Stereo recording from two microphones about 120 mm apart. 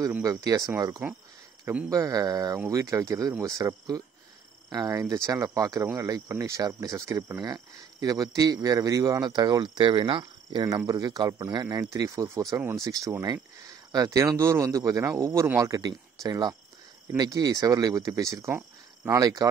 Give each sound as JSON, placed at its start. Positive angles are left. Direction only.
{"t": 0.2, "sound": "speech", "side_deg": -30}